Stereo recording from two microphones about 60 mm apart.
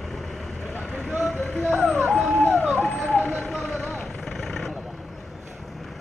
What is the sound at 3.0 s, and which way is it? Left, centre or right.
Speech, left.